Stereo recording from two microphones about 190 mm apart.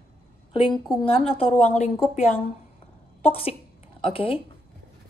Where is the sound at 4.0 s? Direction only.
30° left (ahead or behind).